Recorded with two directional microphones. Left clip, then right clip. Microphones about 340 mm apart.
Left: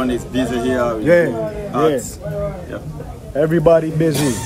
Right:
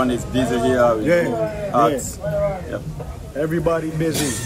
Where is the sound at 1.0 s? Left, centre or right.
Centre.